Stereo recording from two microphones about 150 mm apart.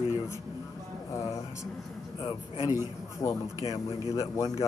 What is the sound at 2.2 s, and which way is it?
Speech, 35° left (ahead or behind).